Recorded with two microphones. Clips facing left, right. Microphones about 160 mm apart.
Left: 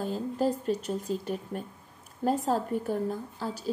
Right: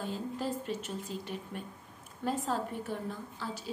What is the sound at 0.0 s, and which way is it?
A woman's voice, 40° left (ahead or behind).